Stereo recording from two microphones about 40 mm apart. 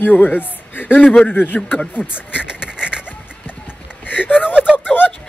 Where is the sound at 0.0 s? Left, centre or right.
Left.